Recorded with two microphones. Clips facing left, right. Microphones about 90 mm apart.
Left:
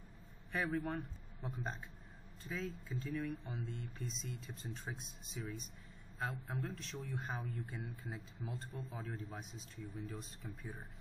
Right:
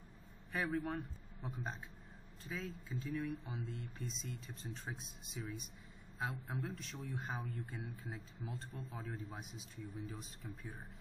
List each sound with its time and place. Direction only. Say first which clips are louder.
0.5 s a man's voice: even; centre (ahead or behind)